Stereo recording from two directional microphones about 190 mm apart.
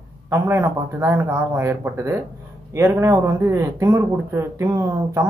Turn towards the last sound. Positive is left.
turn(degrees=-15)  # may be behind; listen again after turning